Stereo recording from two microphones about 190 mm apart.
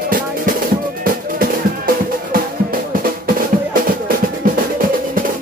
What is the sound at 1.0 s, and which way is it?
Music, 50° right (ahead or behind).